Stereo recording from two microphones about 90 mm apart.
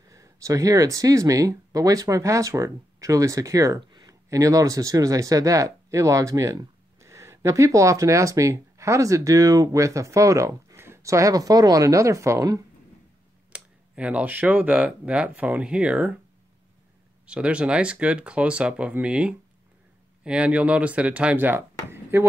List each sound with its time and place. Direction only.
0.1 s speech: 35° right (ahead or behind)
3.8 s a sound: 50° right (ahead or behind)
4.1 s speech: 40° right (ahead or behind)
13.5 s speech: 15° right (ahead or behind)
17.3 s speech: 15° right (ahead or behind)